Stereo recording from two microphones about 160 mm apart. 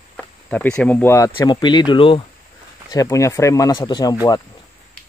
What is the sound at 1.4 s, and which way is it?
Speech, 25° left (ahead or behind).